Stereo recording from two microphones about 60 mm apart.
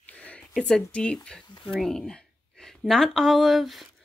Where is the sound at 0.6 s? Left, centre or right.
Centre.